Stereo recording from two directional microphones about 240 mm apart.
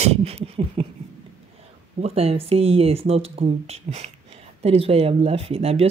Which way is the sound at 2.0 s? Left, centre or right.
Right.